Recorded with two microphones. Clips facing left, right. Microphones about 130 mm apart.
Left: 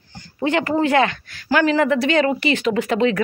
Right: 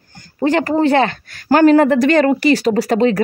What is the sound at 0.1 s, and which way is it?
Speech, 45° right (ahead or behind).